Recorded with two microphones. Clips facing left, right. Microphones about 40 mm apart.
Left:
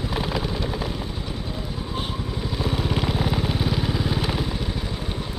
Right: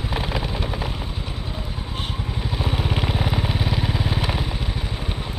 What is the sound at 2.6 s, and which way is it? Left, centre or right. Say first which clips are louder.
Vehicle: even; centre.